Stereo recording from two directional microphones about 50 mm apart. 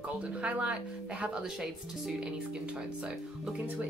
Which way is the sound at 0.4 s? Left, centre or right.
Right.